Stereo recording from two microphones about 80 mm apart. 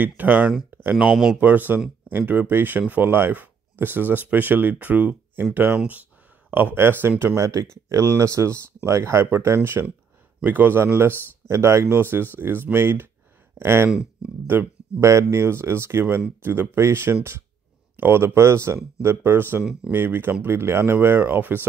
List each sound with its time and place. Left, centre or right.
0.2 s speech: centre
0.7 s a sound: right
0.9 s speech: centre
1.3 s speech: right
19.6 s speech: centre
19.9 s speech: right